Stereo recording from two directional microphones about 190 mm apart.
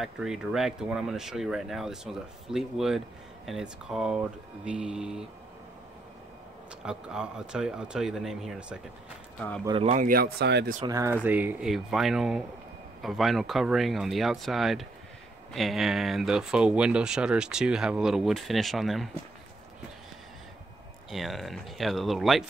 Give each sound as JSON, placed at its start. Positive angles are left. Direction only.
{"t": 0.0, "sound": "speech", "side_deg": 0}
{"t": 6.8, "sound": "speech", "side_deg": -5}
{"t": 9.7, "sound": "speech", "side_deg": -30}
{"t": 9.9, "sound": "speech", "side_deg": -50}
{"t": 10.9, "sound": "speech", "side_deg": -15}
{"t": 21.1, "sound": "speech", "side_deg": 0}